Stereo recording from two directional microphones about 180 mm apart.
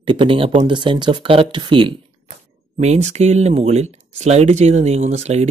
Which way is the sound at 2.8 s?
40° right (ahead or behind).